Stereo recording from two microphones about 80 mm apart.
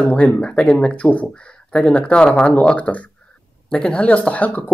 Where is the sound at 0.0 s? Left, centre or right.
Centre.